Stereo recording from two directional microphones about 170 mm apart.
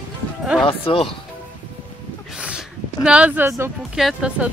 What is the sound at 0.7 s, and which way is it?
Speech, 30° left (ahead or behind).